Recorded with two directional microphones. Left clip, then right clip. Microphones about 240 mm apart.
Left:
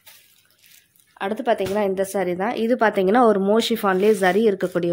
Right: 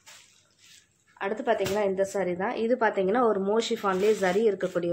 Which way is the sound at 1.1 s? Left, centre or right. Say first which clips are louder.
Left 5 dB; left.